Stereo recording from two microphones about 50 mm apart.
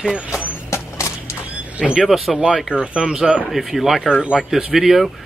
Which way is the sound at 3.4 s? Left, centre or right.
Centre.